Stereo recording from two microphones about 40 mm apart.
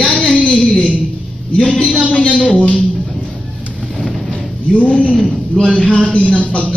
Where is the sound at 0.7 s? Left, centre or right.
Left.